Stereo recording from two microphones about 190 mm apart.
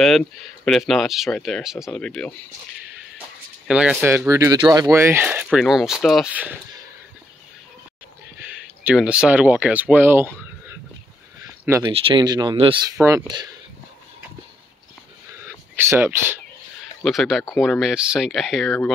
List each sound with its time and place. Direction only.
0.0 s speech: centre (ahead or behind)
3.6 s speech: 5° right (ahead or behind)
8.4 s speech: 5° right (ahead or behind)
11.8 s speech: 25° right (ahead or behind)
12.9 s speech: 15° right (ahead or behind)
15.4 s a sound: 10° right (ahead or behind)
17.0 s speech: centre (ahead or behind)